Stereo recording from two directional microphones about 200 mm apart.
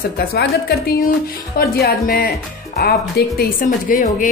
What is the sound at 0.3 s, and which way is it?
A woman's voice, 50° left (ahead or behind).